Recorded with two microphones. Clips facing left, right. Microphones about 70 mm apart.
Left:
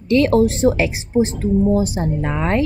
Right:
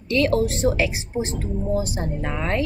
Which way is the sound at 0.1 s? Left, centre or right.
Left.